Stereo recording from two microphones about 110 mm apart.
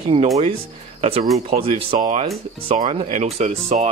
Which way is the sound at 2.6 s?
60° right (ahead or behind).